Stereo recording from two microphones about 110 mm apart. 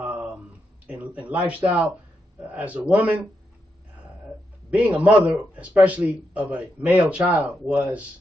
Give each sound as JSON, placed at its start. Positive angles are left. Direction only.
{"t": 0.0, "sound": "a sound", "side_deg": -15}
{"t": 1.3, "sound": "speech", "side_deg": -15}
{"t": 4.6, "sound": "speech", "side_deg": -15}